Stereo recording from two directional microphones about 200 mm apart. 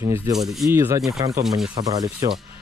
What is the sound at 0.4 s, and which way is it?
Speech, centre (ahead or behind).